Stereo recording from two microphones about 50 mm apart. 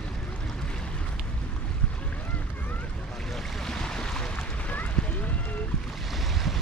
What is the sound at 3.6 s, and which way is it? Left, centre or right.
Boat, centre.